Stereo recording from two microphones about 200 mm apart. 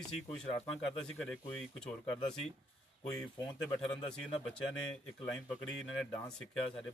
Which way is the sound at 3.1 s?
5° left (ahead or behind).